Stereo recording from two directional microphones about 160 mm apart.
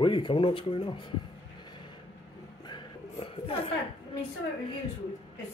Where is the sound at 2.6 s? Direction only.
30° left (ahead or behind).